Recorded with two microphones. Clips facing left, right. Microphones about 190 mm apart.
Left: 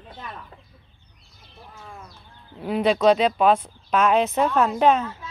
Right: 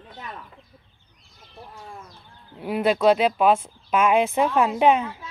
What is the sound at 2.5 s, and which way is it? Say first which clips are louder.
Speech: left 1 dB; 5° right (ahead or behind).